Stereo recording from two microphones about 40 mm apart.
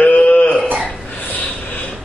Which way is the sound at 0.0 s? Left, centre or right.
Left.